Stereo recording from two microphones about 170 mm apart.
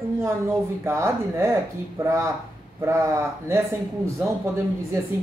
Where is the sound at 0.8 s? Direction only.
15° right (ahead or behind).